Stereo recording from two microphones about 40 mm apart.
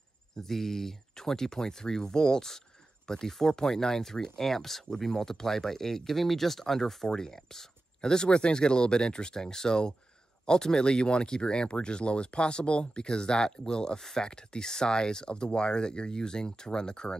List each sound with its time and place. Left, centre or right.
0.4 s speech: centre